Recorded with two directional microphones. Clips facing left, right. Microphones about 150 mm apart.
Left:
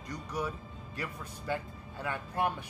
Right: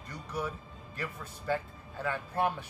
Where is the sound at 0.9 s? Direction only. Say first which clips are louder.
Even; 15° left (ahead or behind).